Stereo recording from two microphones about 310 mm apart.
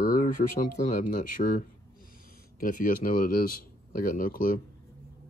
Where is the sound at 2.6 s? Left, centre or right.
Left.